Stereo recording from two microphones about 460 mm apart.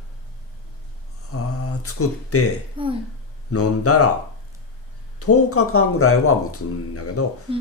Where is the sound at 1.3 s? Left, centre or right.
Left.